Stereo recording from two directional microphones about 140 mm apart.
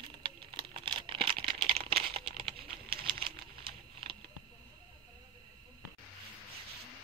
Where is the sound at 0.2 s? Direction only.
40° right (ahead or behind).